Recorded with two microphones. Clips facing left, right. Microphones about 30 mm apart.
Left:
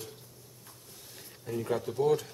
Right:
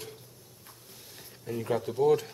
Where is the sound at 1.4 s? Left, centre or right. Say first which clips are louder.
Right 1 dB; centre.